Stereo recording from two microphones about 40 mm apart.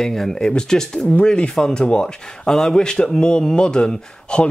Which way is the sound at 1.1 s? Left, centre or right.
Left.